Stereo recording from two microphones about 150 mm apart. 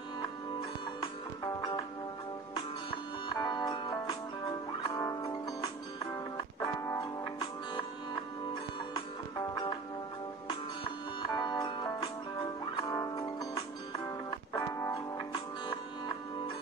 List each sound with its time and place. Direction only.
1.4 s music: 25° left (ahead or behind)
3.3 s music: 25° left (ahead or behind)
6.3 s music: 20° left (ahead or behind)
11.2 s music: 25° left (ahead or behind)
15.1 s music: 30° left (ahead or behind)